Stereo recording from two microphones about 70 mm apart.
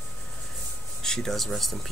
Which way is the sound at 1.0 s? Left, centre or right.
Centre.